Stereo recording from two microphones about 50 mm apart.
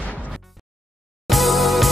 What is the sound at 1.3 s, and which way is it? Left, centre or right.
Music, centre.